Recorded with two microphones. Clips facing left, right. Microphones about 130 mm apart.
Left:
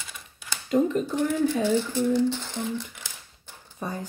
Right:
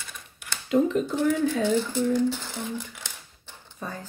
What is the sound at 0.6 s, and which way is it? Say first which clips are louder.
Speech: right 1 dB; centre (ahead or behind).